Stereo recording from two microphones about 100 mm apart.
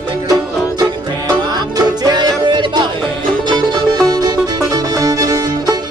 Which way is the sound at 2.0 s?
45° right (ahead or behind).